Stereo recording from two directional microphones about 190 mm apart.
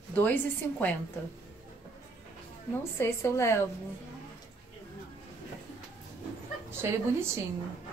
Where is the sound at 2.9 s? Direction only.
15° left (ahead or behind).